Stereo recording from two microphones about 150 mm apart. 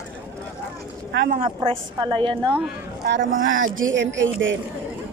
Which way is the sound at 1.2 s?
65° right (ahead or behind).